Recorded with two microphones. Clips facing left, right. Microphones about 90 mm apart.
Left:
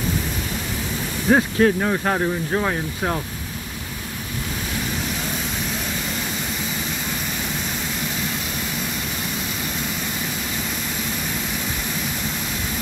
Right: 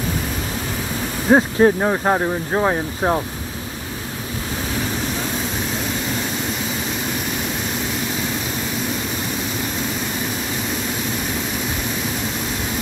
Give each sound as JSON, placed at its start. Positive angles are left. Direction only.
{"t": 1.3, "sound": "speech", "side_deg": -25}